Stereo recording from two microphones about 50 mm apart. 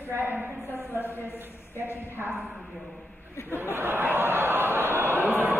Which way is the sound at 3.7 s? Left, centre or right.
Right.